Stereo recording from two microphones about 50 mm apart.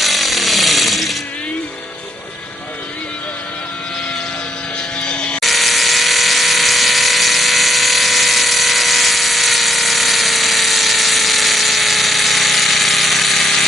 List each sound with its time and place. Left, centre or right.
0.0 s chainsaw: centre
5.0 s toothbrush: centre
5.4 s electric toothbrush: centre